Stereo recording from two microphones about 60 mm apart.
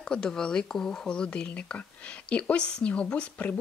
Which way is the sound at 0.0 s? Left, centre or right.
Centre.